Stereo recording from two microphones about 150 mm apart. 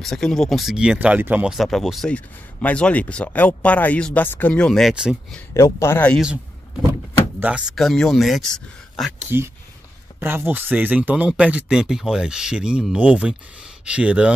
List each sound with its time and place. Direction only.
0.0 s speech: 5° left (ahead or behind)
5.5 s speech: 20° left (ahead or behind)
7.3 s speech: 10° right (ahead or behind)
9.3 s speech: 15° right (ahead or behind)